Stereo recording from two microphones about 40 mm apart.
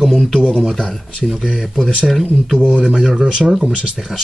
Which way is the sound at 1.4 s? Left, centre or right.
Centre.